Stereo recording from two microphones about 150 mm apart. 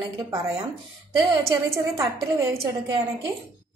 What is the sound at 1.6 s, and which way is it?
Speech, 20° right (ahead or behind).